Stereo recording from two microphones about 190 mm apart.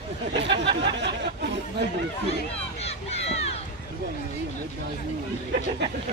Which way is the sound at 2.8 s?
35° left (ahead or behind).